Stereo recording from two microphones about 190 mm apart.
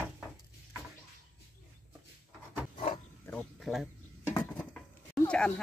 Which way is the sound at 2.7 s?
30° left (ahead or behind).